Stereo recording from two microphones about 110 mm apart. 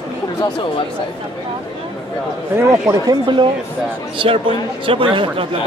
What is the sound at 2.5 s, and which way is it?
Speech, 30° right (ahead or behind).